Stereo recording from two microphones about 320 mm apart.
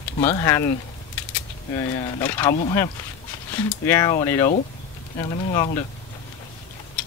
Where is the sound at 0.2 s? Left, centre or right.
Centre.